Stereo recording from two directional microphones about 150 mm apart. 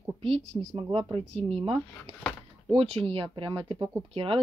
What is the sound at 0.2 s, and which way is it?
Speech, 45° right (ahead or behind).